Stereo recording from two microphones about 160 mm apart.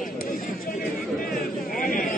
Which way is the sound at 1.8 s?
60° left (ahead or behind).